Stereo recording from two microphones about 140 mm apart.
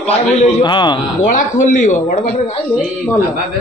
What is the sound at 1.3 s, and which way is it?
Speech, 60° left (ahead or behind).